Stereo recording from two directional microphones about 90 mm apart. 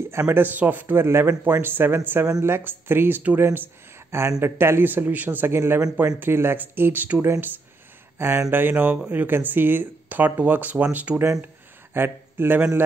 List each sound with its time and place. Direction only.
0.3 s speech: 20° right (ahead or behind)